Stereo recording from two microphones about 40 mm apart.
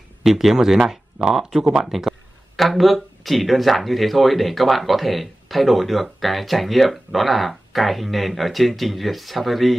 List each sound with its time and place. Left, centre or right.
0.2 s speech: centre